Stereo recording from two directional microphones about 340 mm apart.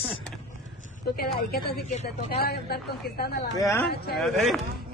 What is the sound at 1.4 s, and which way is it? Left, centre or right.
A man's voice, left.